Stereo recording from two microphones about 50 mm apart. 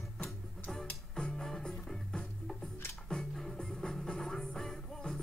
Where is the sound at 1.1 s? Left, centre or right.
Centre.